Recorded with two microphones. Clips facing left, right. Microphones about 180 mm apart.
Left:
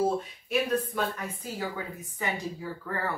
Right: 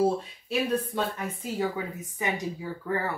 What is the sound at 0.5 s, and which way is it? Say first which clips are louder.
A woman's voice: even; 30° right (ahead or behind).